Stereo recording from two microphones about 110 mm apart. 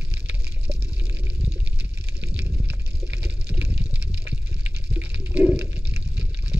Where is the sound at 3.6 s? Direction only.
15° right (ahead or behind).